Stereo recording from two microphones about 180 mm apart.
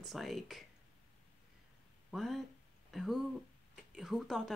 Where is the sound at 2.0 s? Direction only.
Centre (ahead or behind).